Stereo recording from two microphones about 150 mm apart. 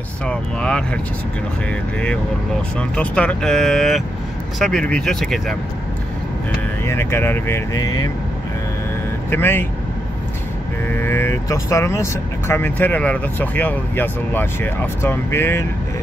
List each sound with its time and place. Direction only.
0.3 s speech: 5° left (ahead or behind)
2.8 s speech: 10° left (ahead or behind)
6.9 s speech: 15° left (ahead or behind)
9.3 s speech: 15° left (ahead or behind)
10.9 s speech: 15° left (ahead or behind)